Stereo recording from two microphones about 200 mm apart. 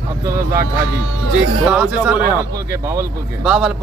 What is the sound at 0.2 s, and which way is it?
Speech, 15° right (ahead or behind).